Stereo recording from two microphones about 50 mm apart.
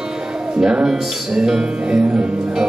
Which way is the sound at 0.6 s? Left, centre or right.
Centre.